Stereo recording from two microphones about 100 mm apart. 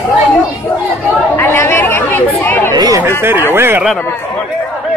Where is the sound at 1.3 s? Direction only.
20° left (ahead or behind).